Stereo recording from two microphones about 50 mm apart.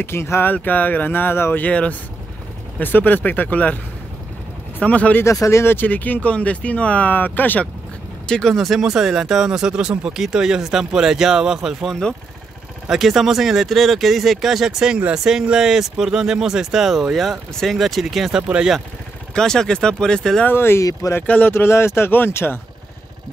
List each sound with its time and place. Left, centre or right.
0.0 s speech: left
0.5 s speech: left
1.6 s speech: left
2.8 s speech: left
5.2 s speech: left
5.7 s speech: left
8.3 s speech: centre
12.9 s speech: centre
18.3 s speech: centre
19.3 s speech: centre
20.4 s speech: left
22.1 s speech: left